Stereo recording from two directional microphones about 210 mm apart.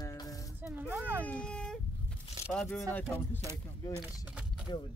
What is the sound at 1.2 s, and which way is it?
Speech, 5° left (ahead or behind).